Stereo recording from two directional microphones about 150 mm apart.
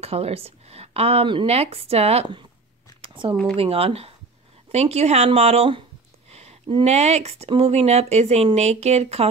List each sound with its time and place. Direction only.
0.0 s a woman's voice: 40° right (ahead or behind)
3.0 s a sound: 35° right (ahead or behind)
3.5 s a woman's voice: 40° right (ahead or behind)